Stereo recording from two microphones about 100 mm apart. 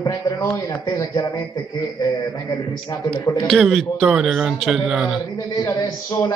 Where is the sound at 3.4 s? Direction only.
Centre (ahead or behind).